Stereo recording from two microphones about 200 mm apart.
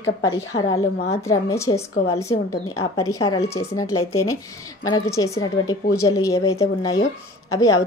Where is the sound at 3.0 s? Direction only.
90° left.